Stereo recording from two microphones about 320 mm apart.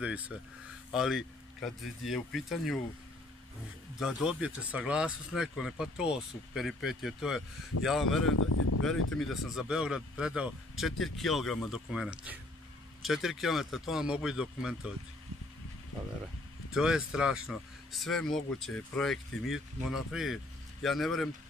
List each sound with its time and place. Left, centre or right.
0.0 s speech: centre
4.0 s speech: centre
8.4 s speech: left
9.1 s speech: centre
16.7 s speech: centre